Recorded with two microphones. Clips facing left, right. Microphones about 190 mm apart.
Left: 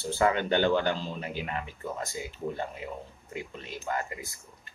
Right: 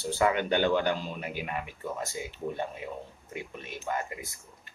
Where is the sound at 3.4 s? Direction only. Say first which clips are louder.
Left 1 dB; 20° right (ahead or behind).